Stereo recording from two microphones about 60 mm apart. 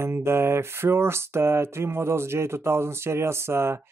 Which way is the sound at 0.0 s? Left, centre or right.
Right.